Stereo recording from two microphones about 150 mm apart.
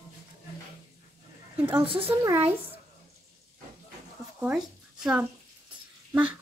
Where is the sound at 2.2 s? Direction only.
15° right (ahead or behind).